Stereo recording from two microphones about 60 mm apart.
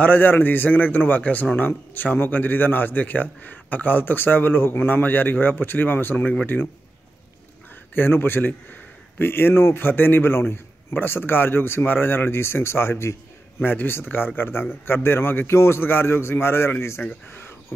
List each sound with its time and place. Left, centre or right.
0.0 s a man's voice: left
7.9 s a man's voice: left
13.6 s a man's voice: left
15.4 s a man's voice: left
15.8 s a man's voice: left